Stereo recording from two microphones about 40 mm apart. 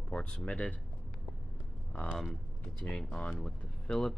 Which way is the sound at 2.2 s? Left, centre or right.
Centre.